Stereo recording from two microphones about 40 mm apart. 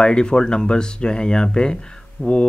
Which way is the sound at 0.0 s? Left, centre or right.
Left.